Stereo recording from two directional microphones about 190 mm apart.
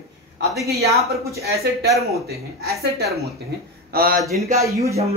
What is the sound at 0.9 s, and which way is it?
Speech, 55° right (ahead or behind).